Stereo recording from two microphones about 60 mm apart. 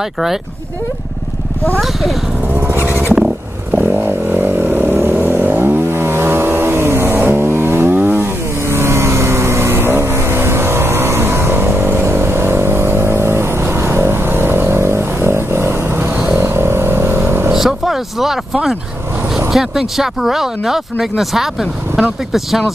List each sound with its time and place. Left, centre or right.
2.7 s vehicle: right
8.6 s vehicle: right
17.5 s roaring cats: centre
19.5 s speech: centre